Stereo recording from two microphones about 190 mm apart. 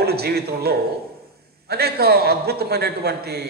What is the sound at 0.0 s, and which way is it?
A man's voice, 55° right (ahead or behind).